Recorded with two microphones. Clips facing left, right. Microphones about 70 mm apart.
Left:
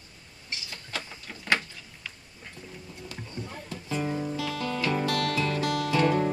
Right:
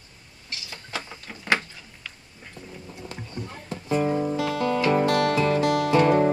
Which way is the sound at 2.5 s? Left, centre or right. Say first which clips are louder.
Right 4 dB; centre.